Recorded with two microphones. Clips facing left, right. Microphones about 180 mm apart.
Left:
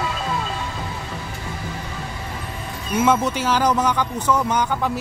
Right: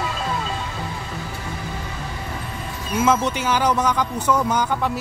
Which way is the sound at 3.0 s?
Centre (ahead or behind).